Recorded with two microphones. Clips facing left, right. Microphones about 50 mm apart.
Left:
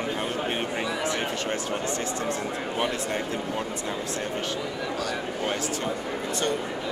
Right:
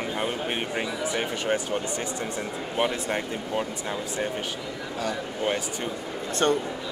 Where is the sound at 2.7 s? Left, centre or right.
Centre.